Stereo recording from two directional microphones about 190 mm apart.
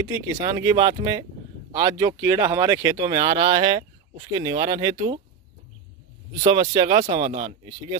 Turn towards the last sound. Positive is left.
turn(degrees=-30)  # may be behind; listen again after turning